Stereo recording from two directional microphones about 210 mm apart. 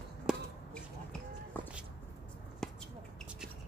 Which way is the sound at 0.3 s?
Centre (ahead or behind).